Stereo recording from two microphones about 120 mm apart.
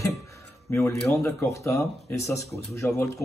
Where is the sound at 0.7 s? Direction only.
25° left (ahead or behind).